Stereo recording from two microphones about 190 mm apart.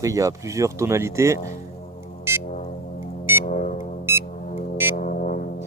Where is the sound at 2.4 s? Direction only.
40° left (ahead or behind).